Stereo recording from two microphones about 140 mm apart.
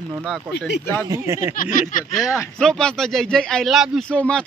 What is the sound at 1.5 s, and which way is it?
Speech, 75° left (ahead or behind).